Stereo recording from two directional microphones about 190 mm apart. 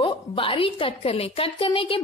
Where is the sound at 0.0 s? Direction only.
25° left (ahead or behind).